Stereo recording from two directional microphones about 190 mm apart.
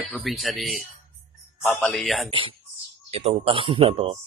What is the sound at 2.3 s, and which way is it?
Speech, 25° right (ahead or behind).